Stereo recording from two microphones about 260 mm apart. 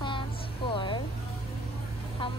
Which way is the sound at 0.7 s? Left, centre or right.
Centre.